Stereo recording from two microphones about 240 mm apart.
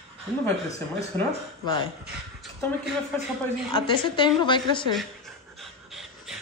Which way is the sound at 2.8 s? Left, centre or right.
Centre.